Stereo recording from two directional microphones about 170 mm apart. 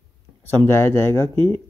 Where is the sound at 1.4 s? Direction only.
25° right (ahead or behind).